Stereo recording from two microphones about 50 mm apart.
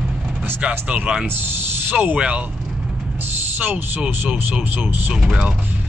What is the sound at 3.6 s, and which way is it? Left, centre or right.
Speech, right.